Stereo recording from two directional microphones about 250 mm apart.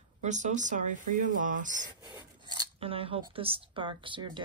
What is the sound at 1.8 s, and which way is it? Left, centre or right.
Speech, centre.